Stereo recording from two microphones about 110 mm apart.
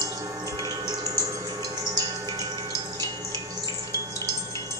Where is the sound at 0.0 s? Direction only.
35° right (ahead or behind).